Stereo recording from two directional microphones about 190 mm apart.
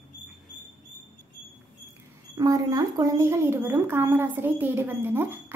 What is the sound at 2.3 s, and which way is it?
Speech, 20° right (ahead or behind).